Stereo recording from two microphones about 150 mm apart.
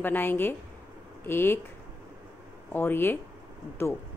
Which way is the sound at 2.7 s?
15° left (ahead or behind).